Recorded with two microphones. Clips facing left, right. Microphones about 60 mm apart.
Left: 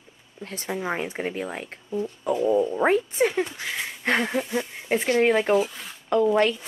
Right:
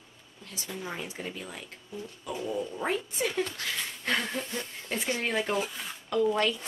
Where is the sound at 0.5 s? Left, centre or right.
Left.